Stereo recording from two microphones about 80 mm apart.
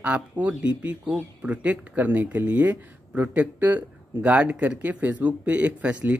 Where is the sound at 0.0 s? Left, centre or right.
Centre.